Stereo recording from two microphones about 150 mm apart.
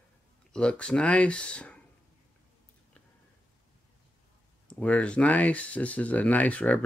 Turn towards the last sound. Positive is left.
turn(degrees=10)  # may be behind; listen again after turning